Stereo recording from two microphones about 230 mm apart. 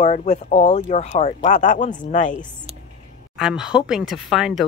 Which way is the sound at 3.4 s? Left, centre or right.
Centre.